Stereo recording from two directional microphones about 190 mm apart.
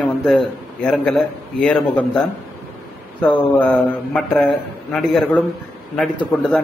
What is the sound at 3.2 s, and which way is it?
A man's voice, 5° left (ahead or behind).